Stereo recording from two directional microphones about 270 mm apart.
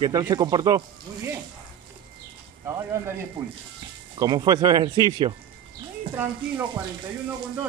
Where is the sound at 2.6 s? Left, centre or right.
Centre.